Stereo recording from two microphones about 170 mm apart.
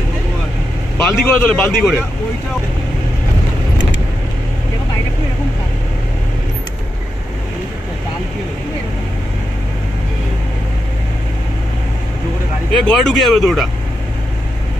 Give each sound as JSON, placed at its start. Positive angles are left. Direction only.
{"t": 1.0, "sound": "speech", "side_deg": 5}
{"t": 12.8, "sound": "speech", "side_deg": 5}